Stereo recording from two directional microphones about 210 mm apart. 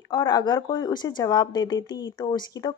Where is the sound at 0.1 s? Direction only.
20° left (ahead or behind).